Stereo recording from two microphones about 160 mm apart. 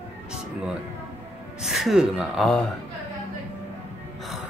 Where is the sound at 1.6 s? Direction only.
Centre (ahead or behind).